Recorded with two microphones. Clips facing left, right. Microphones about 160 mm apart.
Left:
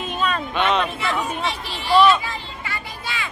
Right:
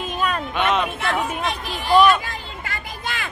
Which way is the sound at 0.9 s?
55° right (ahead or behind).